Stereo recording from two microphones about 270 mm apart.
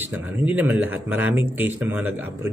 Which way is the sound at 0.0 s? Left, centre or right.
Centre.